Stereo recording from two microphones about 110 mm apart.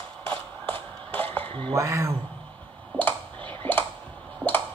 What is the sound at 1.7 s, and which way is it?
Speech, 30° right (ahead or behind).